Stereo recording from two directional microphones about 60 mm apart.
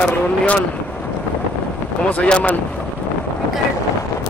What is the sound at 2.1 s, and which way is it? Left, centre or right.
Speech, centre.